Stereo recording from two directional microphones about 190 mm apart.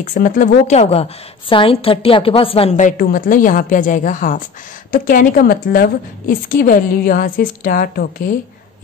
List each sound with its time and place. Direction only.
0.0 s a woman's voice: 45° left (ahead or behind)